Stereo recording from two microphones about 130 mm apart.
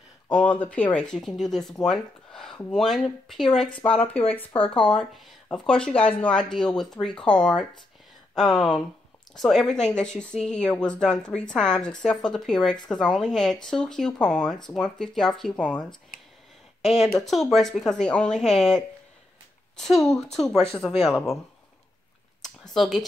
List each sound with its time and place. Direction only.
0.3 s speech: 10° left (ahead or behind)
4.5 s speech: 40° left (ahead or behind)
4.8 s speech: 5° left (ahead or behind)
17.0 s speech: centre (ahead or behind)
22.4 s a sound: centre (ahead or behind)